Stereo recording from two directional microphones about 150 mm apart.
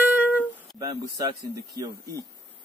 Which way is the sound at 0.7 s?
25° right (ahead or behind).